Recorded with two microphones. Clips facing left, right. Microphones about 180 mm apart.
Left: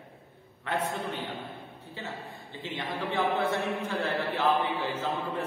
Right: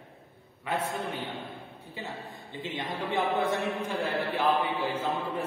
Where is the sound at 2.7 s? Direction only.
15° right (ahead or behind).